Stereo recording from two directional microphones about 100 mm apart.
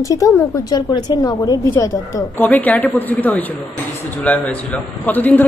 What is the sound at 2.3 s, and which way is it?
A man's voice, 15° left (ahead or behind).